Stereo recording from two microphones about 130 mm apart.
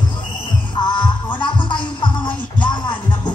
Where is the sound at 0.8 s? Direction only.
35° left (ahead or behind).